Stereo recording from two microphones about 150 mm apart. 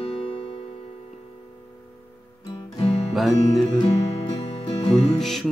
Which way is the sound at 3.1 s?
Centre (ahead or behind).